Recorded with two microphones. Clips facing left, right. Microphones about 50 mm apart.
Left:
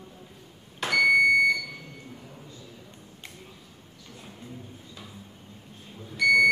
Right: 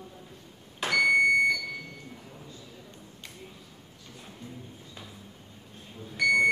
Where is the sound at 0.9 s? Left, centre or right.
Centre.